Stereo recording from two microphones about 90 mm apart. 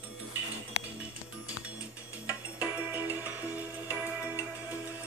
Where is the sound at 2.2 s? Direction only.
20° right (ahead or behind).